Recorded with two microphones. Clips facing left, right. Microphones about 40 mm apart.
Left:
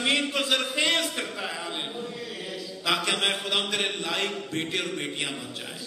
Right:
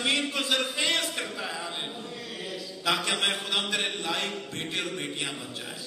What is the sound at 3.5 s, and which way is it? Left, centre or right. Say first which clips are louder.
Music: left 2 dB; left.